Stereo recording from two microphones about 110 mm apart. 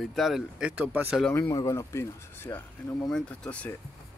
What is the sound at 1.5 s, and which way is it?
Speech, 30° left (ahead or behind).